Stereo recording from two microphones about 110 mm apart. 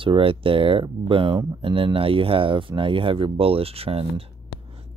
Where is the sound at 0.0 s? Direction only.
55° right (ahead or behind).